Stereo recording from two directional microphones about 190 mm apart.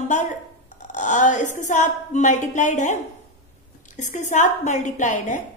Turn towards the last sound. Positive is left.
turn(degrees=40)  # may be behind; listen again after turning